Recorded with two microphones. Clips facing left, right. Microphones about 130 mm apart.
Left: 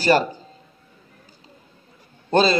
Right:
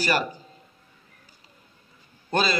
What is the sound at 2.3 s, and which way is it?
Speech, 30° left (ahead or behind).